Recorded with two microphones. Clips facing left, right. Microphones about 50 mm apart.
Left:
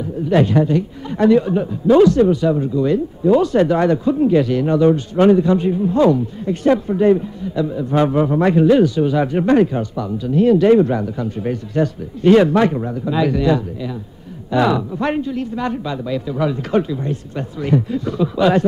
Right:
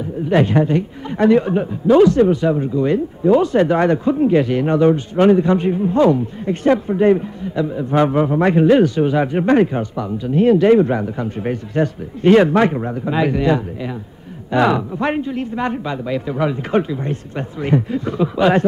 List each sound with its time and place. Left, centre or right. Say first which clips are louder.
0.3 s a man's voice: even; right
15.0 s a man's voice: even; right